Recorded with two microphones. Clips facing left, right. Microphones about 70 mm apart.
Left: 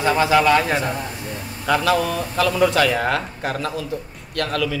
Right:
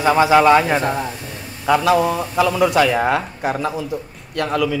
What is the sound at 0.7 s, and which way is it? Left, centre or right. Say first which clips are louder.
Speech: right 4 dB; right.